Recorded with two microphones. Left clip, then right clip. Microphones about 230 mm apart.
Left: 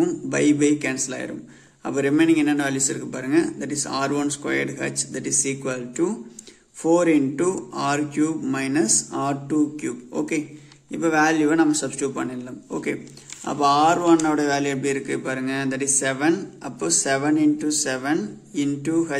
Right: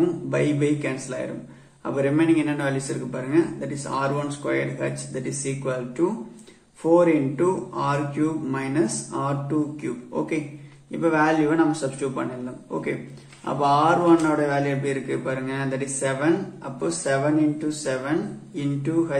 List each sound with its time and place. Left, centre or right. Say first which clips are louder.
0.0 s a man's voice: left 2 dB; left
13.5 s a man's voice: left 1 dB; left